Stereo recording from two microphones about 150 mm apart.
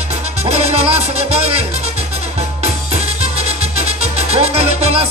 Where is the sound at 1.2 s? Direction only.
40° right (ahead or behind).